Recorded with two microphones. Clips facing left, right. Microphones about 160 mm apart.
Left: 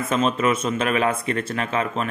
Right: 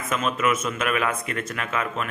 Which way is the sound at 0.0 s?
30° left (ahead or behind).